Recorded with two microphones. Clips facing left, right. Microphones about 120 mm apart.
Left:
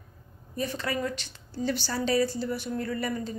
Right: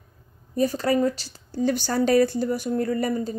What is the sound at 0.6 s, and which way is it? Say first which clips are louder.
A woman's voice: right 9 dB; 40° right (ahead or behind).